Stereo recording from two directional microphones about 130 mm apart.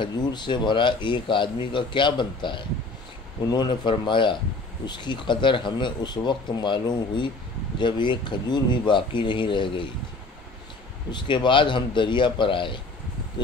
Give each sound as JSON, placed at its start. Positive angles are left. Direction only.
{"t": 0.0, "sound": "a man's voice", "side_deg": 35}
{"t": 11.1, "sound": "a man's voice", "side_deg": 35}